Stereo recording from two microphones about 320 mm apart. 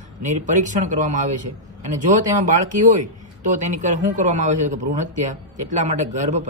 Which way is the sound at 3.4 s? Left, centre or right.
Right.